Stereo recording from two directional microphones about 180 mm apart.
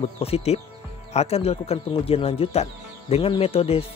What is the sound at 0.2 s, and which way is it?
Speech, 35° left (ahead or behind).